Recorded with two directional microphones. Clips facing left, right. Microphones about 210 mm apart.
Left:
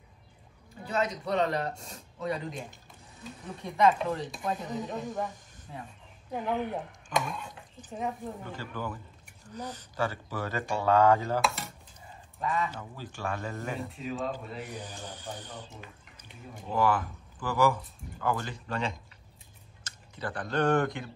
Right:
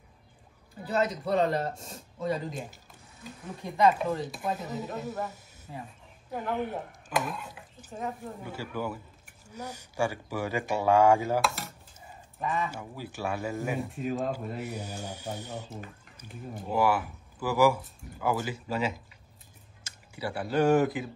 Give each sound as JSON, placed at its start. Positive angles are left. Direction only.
{"t": 0.8, "sound": "speech", "side_deg": -5}
{"t": 12.5, "sound": "speech", "side_deg": -10}
{"t": 13.9, "sound": "speech", "side_deg": -50}
{"t": 14.6, "sound": "speech", "side_deg": -10}